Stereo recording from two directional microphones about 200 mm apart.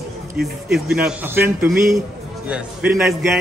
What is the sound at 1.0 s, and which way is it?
A man's voice, 10° right (ahead or behind).